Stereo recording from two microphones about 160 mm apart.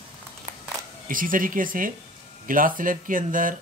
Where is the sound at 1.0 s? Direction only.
60° right (ahead or behind).